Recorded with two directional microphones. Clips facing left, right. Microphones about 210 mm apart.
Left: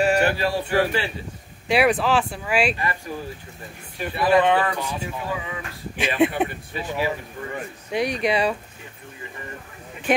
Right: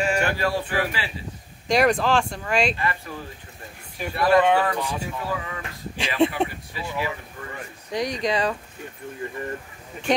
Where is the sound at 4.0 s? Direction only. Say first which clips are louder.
Even; 5° left (ahead or behind).